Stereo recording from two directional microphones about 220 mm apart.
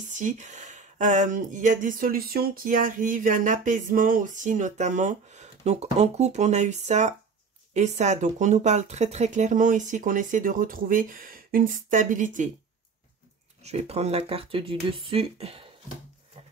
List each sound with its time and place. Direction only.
0.1 s speech: 35° right (ahead or behind)
13.7 s speech: 30° right (ahead or behind)